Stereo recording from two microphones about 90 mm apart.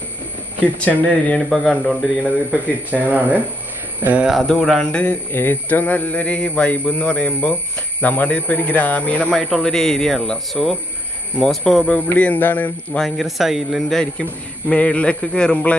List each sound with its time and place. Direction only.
0.7 s speech: 15° left (ahead or behind)
1.5 s speech: centre (ahead or behind)
2.5 s speech: 15° right (ahead or behind)
4.3 s speech: centre (ahead or behind)
4.9 s speech: 20° left (ahead or behind)
9.3 s speech: 5° left (ahead or behind)
13.0 s speech: centre (ahead or behind)